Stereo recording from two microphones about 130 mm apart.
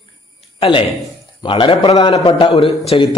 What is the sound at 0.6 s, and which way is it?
A man's voice, 40° left (ahead or behind).